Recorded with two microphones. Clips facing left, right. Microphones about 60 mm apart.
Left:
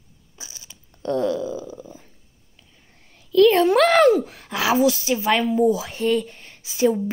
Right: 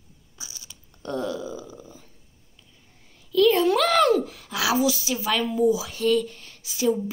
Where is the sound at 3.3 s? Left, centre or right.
Left.